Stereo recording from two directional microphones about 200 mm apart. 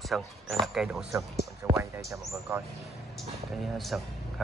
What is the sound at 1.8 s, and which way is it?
Speech, 15° right (ahead or behind).